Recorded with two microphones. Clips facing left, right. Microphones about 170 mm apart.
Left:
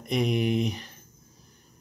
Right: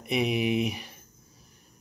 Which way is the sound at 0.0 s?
5° right (ahead or behind).